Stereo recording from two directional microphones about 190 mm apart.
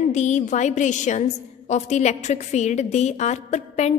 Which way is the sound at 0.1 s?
40° left (ahead or behind).